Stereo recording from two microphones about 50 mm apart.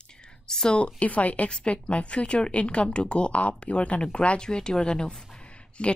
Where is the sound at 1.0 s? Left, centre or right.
Left.